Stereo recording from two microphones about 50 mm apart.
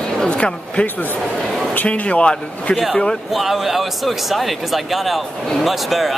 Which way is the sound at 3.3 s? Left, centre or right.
Centre.